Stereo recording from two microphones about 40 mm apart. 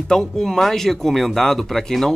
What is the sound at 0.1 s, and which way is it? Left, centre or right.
Speech, centre.